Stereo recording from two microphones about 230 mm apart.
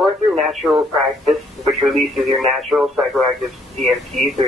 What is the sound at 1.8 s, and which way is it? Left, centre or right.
Speech, centre.